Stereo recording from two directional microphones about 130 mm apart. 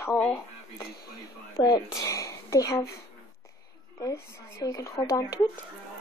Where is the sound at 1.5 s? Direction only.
25° left (ahead or behind).